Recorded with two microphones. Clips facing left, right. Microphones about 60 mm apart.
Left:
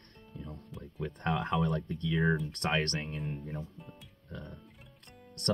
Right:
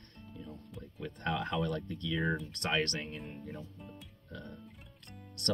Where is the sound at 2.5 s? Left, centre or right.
Left.